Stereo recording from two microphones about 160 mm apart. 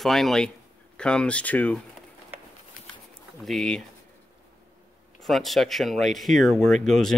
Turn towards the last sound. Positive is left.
turn(degrees=5)  # may be behind; listen again after turning